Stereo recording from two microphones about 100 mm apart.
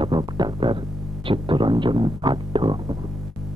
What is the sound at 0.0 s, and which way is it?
Music, 50° right (ahead or behind).